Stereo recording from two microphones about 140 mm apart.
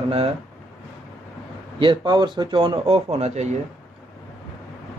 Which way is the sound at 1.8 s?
35° right (ahead or behind).